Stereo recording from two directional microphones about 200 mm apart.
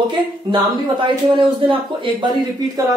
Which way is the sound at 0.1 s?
25° right (ahead or behind).